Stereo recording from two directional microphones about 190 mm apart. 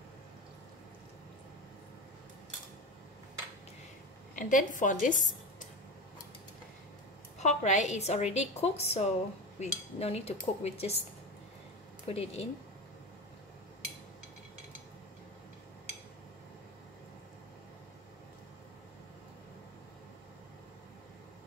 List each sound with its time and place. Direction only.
4.4 s a woman's voice: 45° left (ahead or behind)
7.3 s a woman's voice: 40° left (ahead or behind)
12.1 s a woman's voice: 30° left (ahead or behind)